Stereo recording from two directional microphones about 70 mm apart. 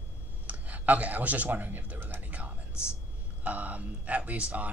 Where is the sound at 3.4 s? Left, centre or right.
Right.